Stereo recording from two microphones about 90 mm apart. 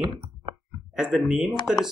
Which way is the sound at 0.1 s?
60° right (ahead or behind).